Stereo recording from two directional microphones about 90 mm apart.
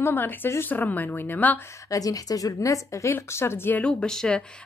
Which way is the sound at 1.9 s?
40° left (ahead or behind).